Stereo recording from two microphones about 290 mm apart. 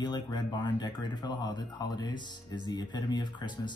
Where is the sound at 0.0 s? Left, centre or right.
Centre.